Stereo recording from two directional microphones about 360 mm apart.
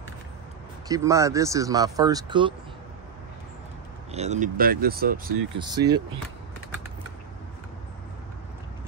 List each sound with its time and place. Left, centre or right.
0.8 s speech: centre
4.1 s speech: centre
5.6 s speech: centre